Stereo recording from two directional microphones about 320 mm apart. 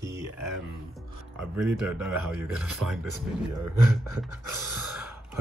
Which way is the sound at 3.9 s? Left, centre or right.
Centre.